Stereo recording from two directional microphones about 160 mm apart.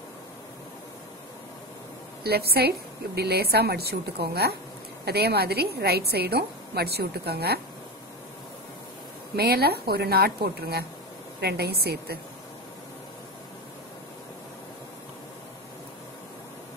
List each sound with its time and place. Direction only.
2.2 s a woman's voice: 80° right
9.4 s a woman's voice: 80° right